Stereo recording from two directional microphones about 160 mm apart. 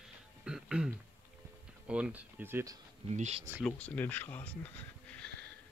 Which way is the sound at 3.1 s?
45° right (ahead or behind).